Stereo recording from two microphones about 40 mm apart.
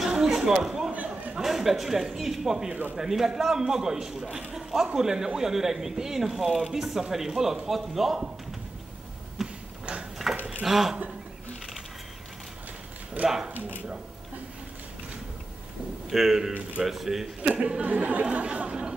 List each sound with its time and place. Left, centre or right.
0.0 s a sound: centre
1.4 s speech: centre
9.4 s a sound: centre
10.6 s speech: centre
13.2 s speech: right
16.1 s speech: centre
17.5 s speech: right